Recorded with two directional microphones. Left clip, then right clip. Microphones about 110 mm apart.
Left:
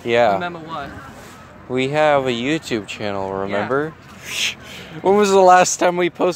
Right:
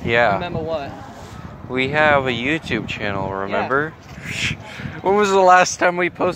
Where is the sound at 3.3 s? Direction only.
50° left (ahead or behind).